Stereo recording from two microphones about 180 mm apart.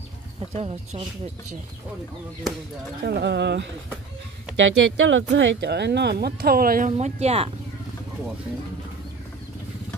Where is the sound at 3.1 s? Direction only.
70° right (ahead or behind).